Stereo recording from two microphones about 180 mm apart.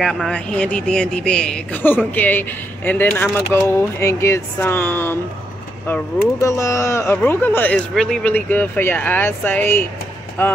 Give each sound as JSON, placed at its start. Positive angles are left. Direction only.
{"t": 0.0, "sound": "speech", "side_deg": 0}